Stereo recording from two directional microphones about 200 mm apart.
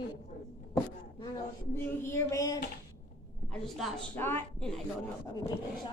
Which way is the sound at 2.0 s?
15° left (ahead or behind).